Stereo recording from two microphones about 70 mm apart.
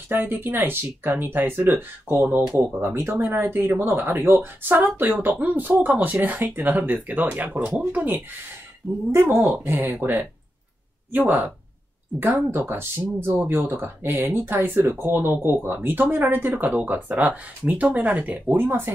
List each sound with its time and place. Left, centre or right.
0.1 s speech: right